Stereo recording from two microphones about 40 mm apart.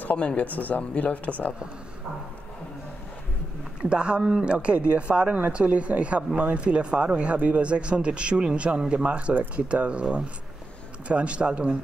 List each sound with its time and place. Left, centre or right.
0.0 s speech: left
3.9 s a man's voice: right